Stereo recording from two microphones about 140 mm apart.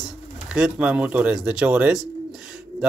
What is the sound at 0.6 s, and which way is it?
Speech, 10° right (ahead or behind).